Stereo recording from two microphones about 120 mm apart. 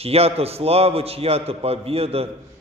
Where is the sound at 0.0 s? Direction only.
55° right (ahead or behind).